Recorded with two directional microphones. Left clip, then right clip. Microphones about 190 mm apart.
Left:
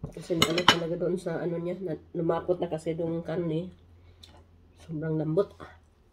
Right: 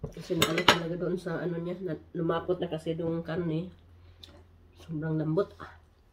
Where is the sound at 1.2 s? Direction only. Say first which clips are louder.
Left 2 dB; 10° left (ahead or behind).